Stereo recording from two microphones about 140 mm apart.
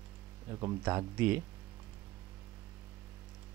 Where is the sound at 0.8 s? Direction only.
15° right (ahead or behind).